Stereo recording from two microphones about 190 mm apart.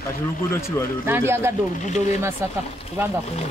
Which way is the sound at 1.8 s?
40° left (ahead or behind).